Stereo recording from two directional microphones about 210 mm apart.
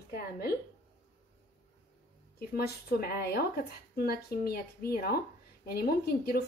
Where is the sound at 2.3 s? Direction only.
45° left (ahead or behind).